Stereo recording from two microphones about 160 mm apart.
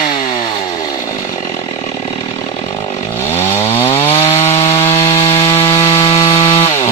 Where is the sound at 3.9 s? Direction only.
40° left (ahead or behind).